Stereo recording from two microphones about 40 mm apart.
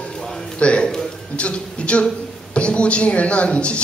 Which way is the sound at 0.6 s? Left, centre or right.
Left.